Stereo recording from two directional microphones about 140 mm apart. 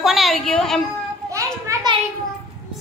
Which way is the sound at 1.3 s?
20° right (ahead or behind).